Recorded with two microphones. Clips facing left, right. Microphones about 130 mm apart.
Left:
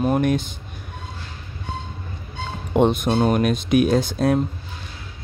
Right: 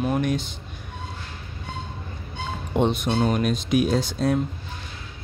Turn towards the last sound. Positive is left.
turn(degrees=55)  # may be behind; listen again after turning